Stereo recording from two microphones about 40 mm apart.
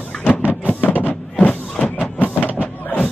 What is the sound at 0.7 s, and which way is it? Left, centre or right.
Vehicle, left.